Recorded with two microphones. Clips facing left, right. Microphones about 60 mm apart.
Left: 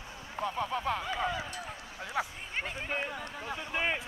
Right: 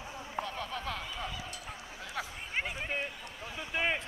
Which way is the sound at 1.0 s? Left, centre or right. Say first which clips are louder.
Left 7 dB; left.